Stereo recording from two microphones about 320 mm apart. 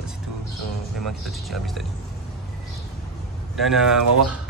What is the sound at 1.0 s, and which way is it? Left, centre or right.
Speech, centre.